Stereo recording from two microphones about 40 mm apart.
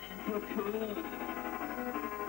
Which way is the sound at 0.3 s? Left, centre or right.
Centre.